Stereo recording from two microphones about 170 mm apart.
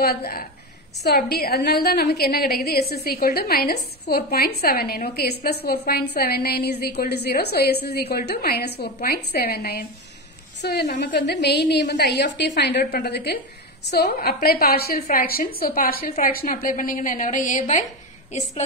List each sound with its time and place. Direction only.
0.0 s a woman's voice: 65° left (ahead or behind); by 17.8 s 50° left (ahead or behind)